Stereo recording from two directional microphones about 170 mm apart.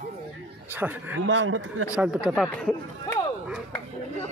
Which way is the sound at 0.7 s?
10° right (ahead or behind).